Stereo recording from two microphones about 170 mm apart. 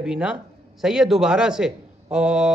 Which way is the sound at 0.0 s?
5° right (ahead or behind).